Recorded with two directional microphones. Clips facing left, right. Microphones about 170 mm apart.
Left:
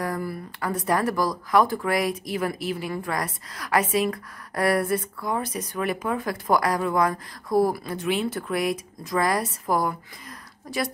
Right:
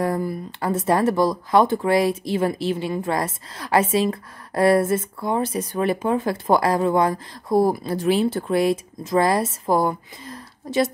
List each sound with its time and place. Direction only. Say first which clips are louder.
0.0 s speech: right 6 dB; 25° right (ahead or behind)